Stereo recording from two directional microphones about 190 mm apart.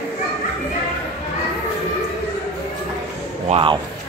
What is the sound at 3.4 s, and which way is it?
Speech, 30° right (ahead or behind).